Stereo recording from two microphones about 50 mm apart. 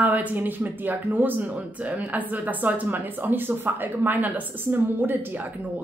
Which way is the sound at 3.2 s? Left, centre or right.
Right.